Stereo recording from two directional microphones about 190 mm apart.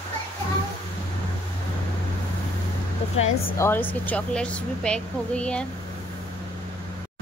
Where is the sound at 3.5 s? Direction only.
10° left (ahead or behind).